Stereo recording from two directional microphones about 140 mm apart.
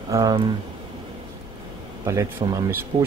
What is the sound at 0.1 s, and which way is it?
Speech, 25° right (ahead or behind).